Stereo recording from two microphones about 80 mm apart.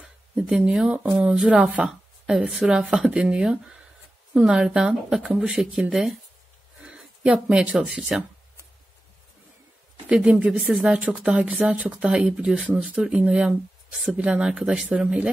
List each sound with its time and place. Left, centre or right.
0.0 s a sound: centre
1.3 s speech: centre
6.8 s a sound: centre
7.4 s speech: centre
10.0 s speech: centre
10.7 s speech: centre